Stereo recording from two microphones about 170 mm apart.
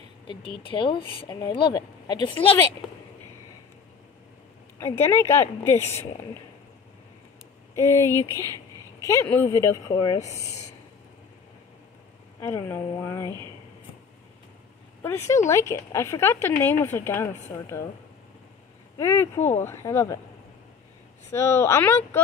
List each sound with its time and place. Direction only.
0.6 s speech: 30° left (ahead or behind)
4.7 s speech: 15° left (ahead or behind)
7.7 s speech: 15° left (ahead or behind)
12.4 s speech: 15° left (ahead or behind)
15.0 s speech: 15° left (ahead or behind)
18.9 s speech: 15° left (ahead or behind)
21.3 s speech: 15° left (ahead or behind)